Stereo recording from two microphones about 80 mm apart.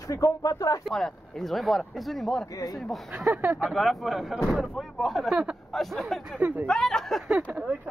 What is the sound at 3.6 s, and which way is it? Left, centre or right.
Speech, centre.